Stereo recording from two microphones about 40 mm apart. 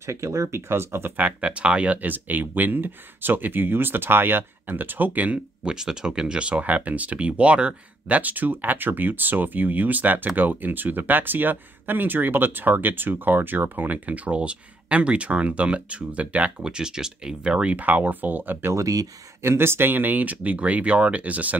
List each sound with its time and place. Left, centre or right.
0.6 s speech: right
1.1 s speech: right
2.0 s speech: right
5.7 s speech: centre
6.5 s speech: right
14.0 s speech: right
16.6 s speech: centre
17.7 s speech: right
19.4 s speech: right